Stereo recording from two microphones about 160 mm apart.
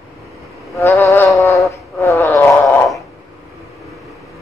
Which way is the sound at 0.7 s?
20° left (ahead or behind).